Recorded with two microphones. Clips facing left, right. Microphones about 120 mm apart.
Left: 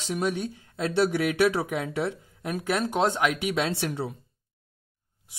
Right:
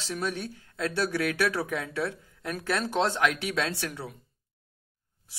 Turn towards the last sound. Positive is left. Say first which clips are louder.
# left 4 dB
turn(degrees=25)  # may be behind; listen again after turning